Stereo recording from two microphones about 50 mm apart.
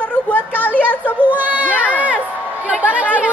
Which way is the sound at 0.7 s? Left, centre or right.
Left.